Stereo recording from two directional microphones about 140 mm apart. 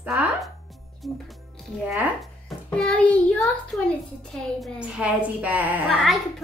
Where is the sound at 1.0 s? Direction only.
Centre (ahead or behind).